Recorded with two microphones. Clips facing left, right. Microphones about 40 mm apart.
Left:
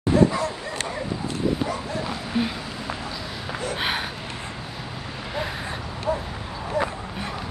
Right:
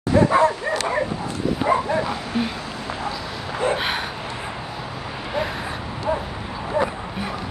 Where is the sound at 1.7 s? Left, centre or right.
Right.